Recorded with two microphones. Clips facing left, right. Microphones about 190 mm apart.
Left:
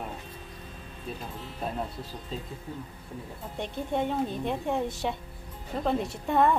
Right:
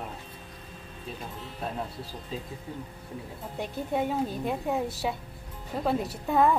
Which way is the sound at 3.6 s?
5° right (ahead or behind).